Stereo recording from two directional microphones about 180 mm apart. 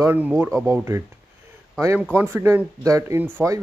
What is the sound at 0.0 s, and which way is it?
Speech, 10° right (ahead or behind).